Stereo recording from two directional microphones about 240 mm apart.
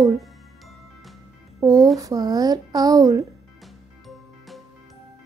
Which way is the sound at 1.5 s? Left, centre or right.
Centre.